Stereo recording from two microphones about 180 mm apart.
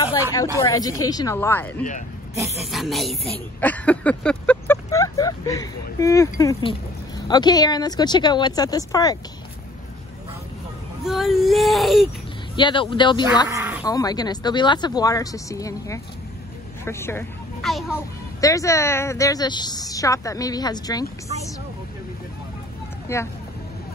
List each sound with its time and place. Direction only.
0.6 s speech: 20° left (ahead or behind)
4.9 s speech: 20° left (ahead or behind)
11.1 s speech: centre (ahead or behind)
12.5 s speech: 25° left (ahead or behind)
13.5 s sheep: 15° right (ahead or behind)
13.8 s speech: 20° left (ahead or behind)
17.6 s speech: centre (ahead or behind)
18.4 s speech: 20° left (ahead or behind)
23.1 s speech: 15° left (ahead or behind)